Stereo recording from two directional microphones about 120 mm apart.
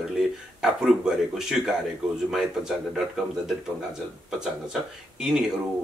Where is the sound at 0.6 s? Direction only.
5° right (ahead or behind).